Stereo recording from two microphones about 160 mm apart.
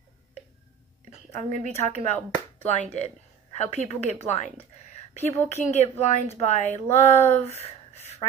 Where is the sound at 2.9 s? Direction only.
45° left (ahead or behind).